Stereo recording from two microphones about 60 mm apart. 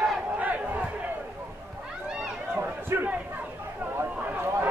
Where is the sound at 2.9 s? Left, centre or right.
Right.